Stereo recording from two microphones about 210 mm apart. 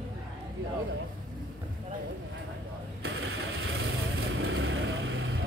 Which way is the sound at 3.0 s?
75° right (ahead or behind).